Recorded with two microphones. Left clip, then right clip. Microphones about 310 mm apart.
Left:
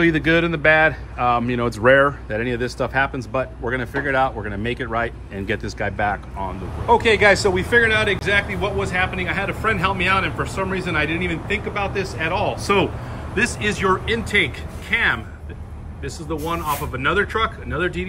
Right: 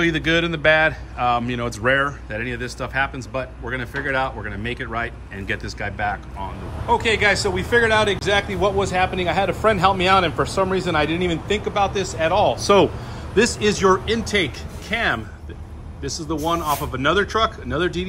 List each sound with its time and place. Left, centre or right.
0.0 s speech: centre